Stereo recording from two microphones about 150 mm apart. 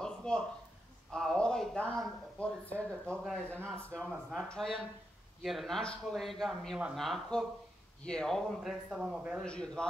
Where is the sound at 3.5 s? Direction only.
15° right (ahead or behind).